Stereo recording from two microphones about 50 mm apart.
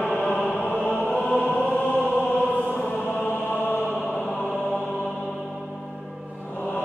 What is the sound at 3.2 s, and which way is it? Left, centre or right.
Chant, left.